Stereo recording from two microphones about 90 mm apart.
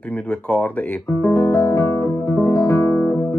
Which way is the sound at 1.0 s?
35° left (ahead or behind).